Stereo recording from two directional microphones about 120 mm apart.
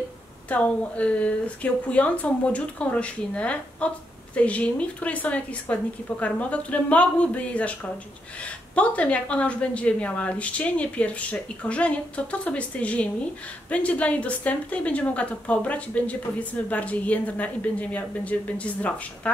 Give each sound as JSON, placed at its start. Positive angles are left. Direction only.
{"t": 0.5, "sound": "a woman's voice", "side_deg": 10}